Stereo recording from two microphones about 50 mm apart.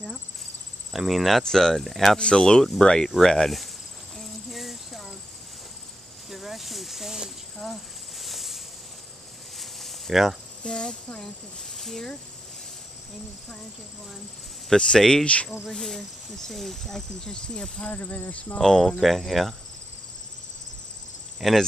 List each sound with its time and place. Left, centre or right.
0.9 s cricket: centre
1.4 s speech: centre
3.2 s cricket: centre
6.3 s a sound: centre
7.5 s snake: centre
9.6 s a sound: centre
10.6 s speech: centre
14.7 s speech: centre
17.8 s speech: left
18.6 s speech: centre
18.9 s cricket: centre
21.4 s speech: centre